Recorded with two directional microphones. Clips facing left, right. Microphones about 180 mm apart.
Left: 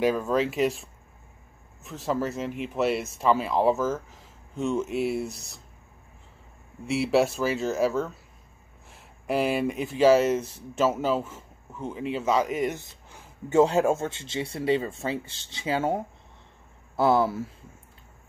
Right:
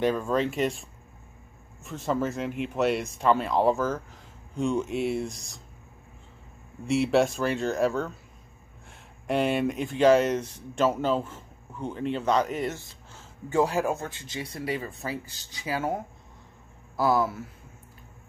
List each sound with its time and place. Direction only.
0.0 s speech: 5° left (ahead or behind)
6.9 s speech: centre (ahead or behind)
9.3 s speech: 5° left (ahead or behind); by 17.5 s 30° left (ahead or behind)